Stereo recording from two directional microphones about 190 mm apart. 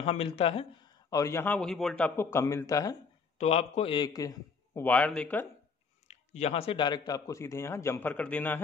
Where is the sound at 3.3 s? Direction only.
35° left (ahead or behind); by 5.5 s 10° left (ahead or behind).